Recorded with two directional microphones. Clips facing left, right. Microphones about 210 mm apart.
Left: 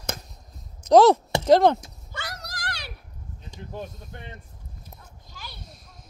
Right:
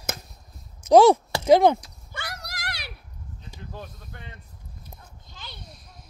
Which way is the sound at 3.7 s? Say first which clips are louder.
Left 6 dB; 20° left (ahead or behind).